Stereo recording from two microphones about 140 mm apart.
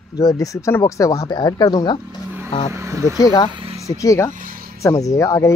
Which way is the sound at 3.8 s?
20° left (ahead or behind).